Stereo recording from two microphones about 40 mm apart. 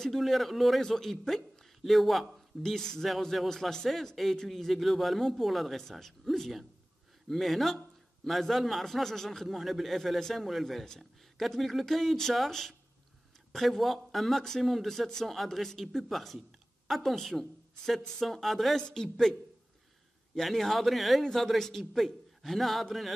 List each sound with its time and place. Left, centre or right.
0.0 s speech: centre
2.6 s a woman's voice: centre
18.8 s a woman's voice: centre
20.3 s speech: centre